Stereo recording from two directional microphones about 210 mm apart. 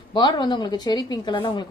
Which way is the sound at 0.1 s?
20° left (ahead or behind).